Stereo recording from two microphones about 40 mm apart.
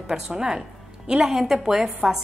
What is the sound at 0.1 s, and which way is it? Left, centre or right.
A woman's voice, centre.